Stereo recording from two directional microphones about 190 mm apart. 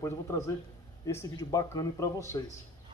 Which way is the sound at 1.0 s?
20° left (ahead or behind).